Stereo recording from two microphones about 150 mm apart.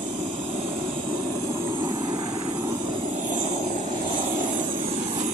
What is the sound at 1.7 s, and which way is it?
Vehicle, 30° right (ahead or behind).